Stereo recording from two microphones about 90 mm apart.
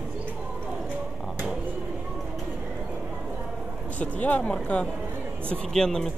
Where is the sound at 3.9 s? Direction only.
15° left (ahead or behind).